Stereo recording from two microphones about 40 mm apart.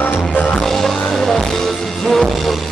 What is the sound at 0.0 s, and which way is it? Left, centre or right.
Music, left.